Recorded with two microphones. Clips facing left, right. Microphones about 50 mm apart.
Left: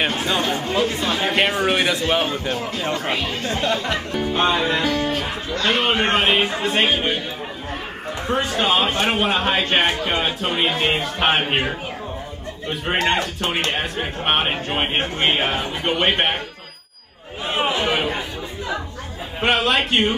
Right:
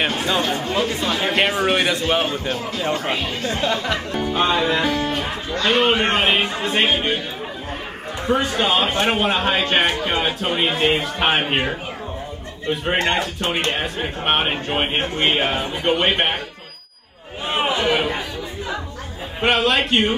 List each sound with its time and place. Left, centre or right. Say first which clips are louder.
0.2 s speech: right 1 dB; centre
4.8 s music: even; right
5.6 s speech: right 2 dB; centre
8.3 s speech: right 1 dB; centre
13.0 s speech: even; centre
17.6 s chatter: right 2 dB; centre
19.4 s speech: right 1 dB; centre